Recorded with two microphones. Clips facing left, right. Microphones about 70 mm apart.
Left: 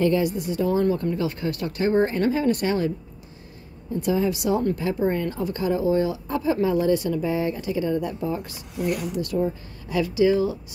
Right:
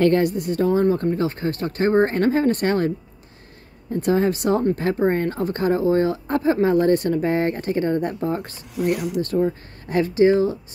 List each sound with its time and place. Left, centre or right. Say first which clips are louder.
0.0 s speech: right 4 dB; right
0.7 s speech: right 3 dB; right
3.9 s speech: right 3 dB; right